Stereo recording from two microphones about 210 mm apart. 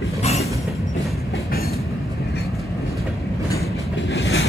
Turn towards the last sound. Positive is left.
turn(degrees=70)  # may be behind; listen again after turning